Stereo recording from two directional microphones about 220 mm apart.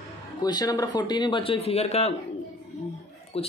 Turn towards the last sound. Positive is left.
turn(degrees=25)  # may be behind; listen again after turning